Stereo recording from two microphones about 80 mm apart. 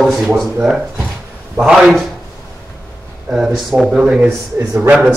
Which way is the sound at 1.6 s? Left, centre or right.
Centre.